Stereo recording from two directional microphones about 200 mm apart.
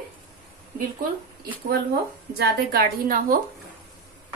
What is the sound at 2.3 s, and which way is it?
Speech, 45° right (ahead or behind).